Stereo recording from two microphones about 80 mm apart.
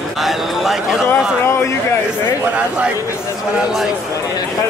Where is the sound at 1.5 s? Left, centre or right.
Left.